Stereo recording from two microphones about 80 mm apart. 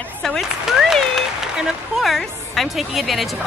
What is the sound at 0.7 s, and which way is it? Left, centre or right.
Applause, centre.